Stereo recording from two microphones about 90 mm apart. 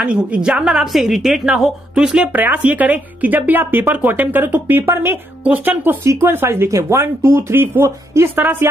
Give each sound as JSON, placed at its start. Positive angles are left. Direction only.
{"t": 0.0, "sound": "a woman's voice", "side_deg": -10}
{"t": 2.3, "sound": "speech", "side_deg": -20}
{"t": 6.0, "sound": "speech", "side_deg": -30}